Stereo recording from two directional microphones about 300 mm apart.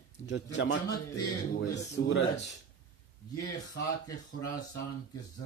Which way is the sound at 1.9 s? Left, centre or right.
Left.